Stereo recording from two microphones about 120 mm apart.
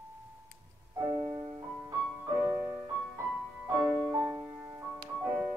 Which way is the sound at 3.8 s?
10° right (ahead or behind).